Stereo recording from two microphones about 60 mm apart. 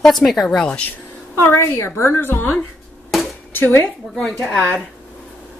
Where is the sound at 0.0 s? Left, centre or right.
Centre.